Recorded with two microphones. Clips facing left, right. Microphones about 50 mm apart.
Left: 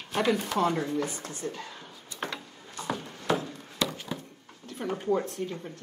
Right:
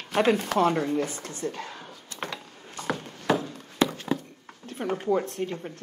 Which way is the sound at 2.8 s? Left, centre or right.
Right.